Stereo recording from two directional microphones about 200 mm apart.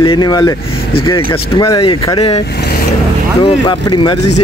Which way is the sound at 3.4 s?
20° left (ahead or behind).